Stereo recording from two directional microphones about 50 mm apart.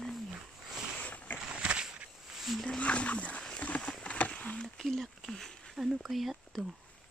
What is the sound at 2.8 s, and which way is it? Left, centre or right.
Speech, left.